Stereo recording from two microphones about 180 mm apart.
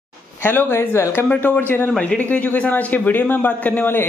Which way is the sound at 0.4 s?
10° left (ahead or behind).